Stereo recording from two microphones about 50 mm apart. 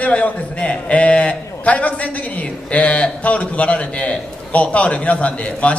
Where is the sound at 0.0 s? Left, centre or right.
Left.